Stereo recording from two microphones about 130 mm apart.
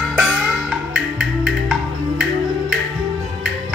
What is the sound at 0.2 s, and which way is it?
Music, centre (ahead or behind).